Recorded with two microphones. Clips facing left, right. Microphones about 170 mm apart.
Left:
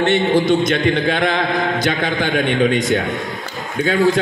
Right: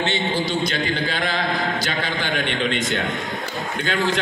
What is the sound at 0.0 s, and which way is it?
A man's voice, 55° left (ahead or behind).